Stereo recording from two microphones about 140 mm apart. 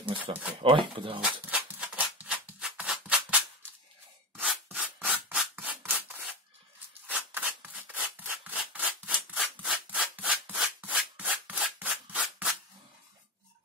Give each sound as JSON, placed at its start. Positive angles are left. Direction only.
{"t": 0.2, "sound": "speech", "side_deg": -10}
{"t": 0.6, "sound": "speech", "side_deg": -40}
{"t": 1.5, "sound": "music", "side_deg": -10}
{"t": 4.7, "sound": "rub", "side_deg": -10}
{"t": 7.1, "sound": "scissors", "side_deg": -10}
{"t": 8.5, "sound": "rub", "side_deg": -10}